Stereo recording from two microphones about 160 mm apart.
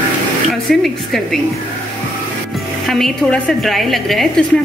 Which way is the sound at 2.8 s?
Centre (ahead or behind).